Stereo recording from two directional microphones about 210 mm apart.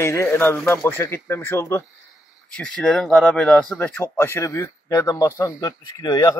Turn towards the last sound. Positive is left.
turn(degrees=20)  # may be behind; listen again after turning